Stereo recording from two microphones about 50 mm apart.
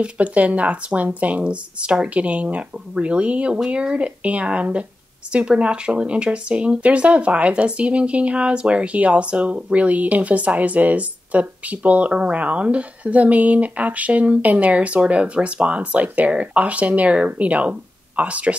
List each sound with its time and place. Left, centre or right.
0.0 s speech: right